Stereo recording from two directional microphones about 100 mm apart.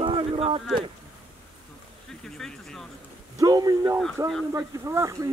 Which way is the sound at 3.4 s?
40° right (ahead or behind).